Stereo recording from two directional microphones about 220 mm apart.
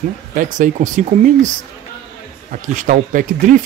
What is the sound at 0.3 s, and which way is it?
Speech, 35° right (ahead or behind).